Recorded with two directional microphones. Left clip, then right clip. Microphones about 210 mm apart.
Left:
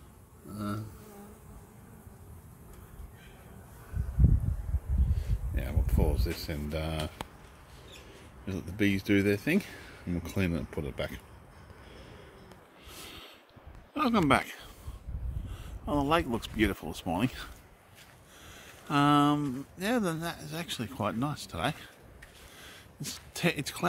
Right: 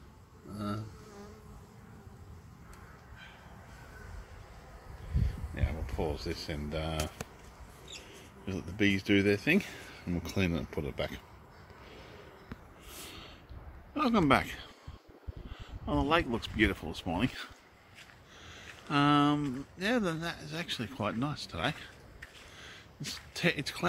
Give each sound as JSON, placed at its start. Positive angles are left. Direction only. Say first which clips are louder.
{"t": 5.5, "sound": "speech", "louder": "left 3 dB", "side_deg": 15}
{"t": 8.5, "sound": "speech", "louder": "even", "side_deg": 5}
{"t": 13.0, "sound": "snort", "louder": "left 1 dB", "side_deg": 0}
{"t": 13.9, "sound": "speech", "louder": "left 1 dB", "side_deg": 5}
{"t": 15.8, "sound": "speech", "louder": "left 1 dB", "side_deg": 10}
{"t": 18.5, "sound": "a sound", "louder": "left 2 dB", "side_deg": 15}
{"t": 19.8, "sound": "speech", "louder": "left 1 dB", "side_deg": 15}
{"t": 22.6, "sound": "a sound", "louder": "left 1 dB", "side_deg": 15}